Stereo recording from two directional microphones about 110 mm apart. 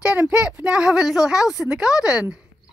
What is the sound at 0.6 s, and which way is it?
A woman's voice, 10° right (ahead or behind).